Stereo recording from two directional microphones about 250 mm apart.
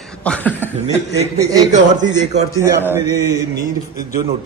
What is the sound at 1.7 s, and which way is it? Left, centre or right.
Speech, right.